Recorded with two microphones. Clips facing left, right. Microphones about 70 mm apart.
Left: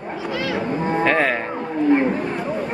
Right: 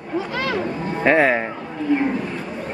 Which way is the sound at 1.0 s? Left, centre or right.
Centre.